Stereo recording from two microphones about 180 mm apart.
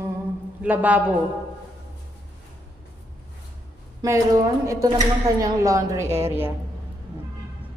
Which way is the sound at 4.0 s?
15° right (ahead or behind).